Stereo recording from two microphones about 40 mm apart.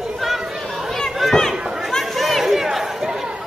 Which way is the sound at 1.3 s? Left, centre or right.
Centre.